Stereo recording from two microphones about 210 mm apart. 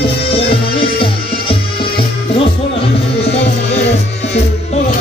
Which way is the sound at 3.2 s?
30° left (ahead or behind).